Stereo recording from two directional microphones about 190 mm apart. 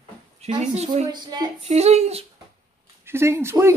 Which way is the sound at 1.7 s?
35° right (ahead or behind).